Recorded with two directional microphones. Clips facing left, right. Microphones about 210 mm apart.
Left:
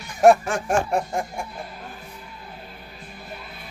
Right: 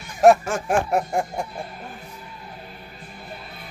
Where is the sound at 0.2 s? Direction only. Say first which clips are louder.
Even; centre (ahead or behind).